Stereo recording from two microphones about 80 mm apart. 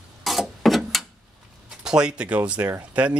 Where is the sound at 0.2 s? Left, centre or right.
Centre.